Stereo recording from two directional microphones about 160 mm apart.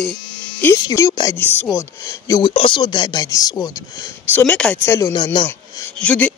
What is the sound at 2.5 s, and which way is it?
Speech, 30° left (ahead or behind).